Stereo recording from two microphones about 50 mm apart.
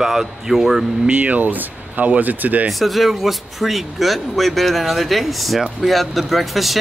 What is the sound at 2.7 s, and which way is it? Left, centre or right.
Speech, centre.